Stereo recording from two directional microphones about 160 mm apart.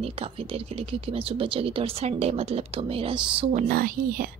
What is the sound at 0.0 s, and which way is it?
Speech, 35° right (ahead or behind).